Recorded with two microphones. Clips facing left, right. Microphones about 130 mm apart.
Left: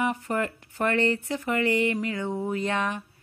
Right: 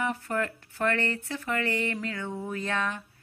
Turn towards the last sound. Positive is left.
turn(degrees=20)  # may be behind; listen again after turning